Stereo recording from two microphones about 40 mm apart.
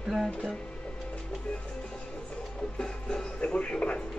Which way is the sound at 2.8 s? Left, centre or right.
Left.